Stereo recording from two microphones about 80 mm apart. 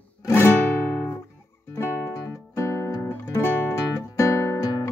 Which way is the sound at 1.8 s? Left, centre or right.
Left.